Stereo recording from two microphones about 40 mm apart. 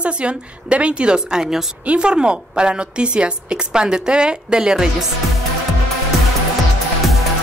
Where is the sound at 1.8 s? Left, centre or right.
Right.